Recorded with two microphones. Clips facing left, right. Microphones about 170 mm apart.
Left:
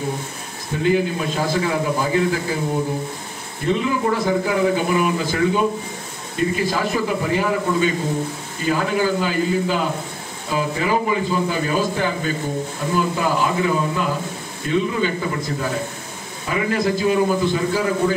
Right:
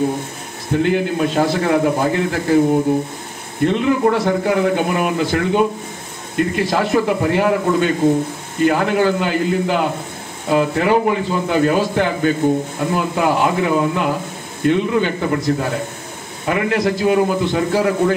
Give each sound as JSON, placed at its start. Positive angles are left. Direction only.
{"t": 0.8, "sound": "speech", "side_deg": -65}
{"t": 3.6, "sound": "speech", "side_deg": -60}